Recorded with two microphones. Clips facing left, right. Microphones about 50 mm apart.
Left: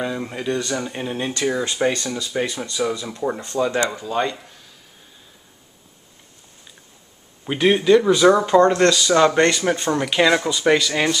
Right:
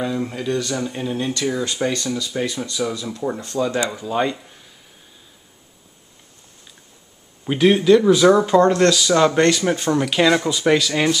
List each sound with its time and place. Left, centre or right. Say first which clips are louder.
0.0 s speech: right 1 dB; centre
3.9 s speech: right 1 dB; centre
7.4 s speech: right 2 dB; centre